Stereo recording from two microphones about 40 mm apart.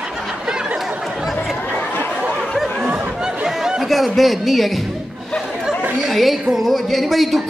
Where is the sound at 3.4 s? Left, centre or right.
Centre.